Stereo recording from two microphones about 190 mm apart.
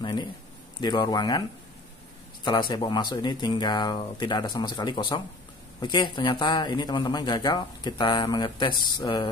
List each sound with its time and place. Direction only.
0.0 s a sound: 25° left (ahead or behind)
0.7 s speech: 25° left (ahead or behind)
2.7 s speech: 25° left (ahead or behind)